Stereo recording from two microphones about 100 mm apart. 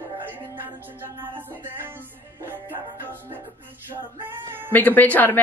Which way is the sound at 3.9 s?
20° right (ahead or behind).